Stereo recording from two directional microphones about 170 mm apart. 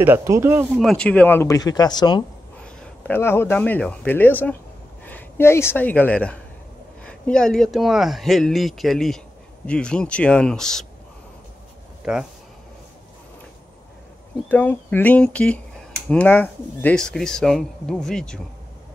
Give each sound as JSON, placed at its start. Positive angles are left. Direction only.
{"t": 0.0, "sound": "speech", "side_deg": -15}
{"t": 0.7, "sound": "speech", "side_deg": 5}
{"t": 2.8, "sound": "speech", "side_deg": 10}
{"t": 12.0, "sound": "speech", "side_deg": -5}
{"t": 14.5, "sound": "speech", "side_deg": 10}